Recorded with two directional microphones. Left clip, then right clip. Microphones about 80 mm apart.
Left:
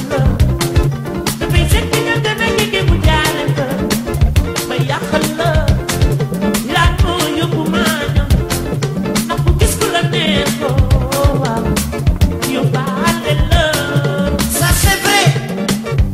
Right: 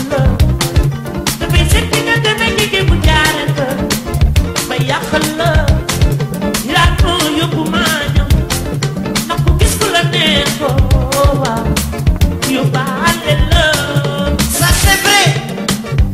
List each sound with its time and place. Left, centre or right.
1.5 s music: right
5.1 s music: right
6.7 s music: right
9.8 s music: right